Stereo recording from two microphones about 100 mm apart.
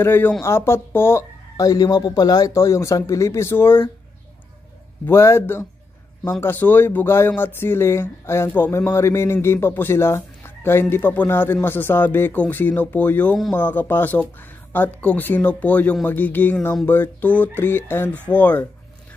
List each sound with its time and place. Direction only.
0.0 s speech: 20° left (ahead or behind)
1.6 s speech: 40° left (ahead or behind)
5.0 s speech: 25° left (ahead or behind)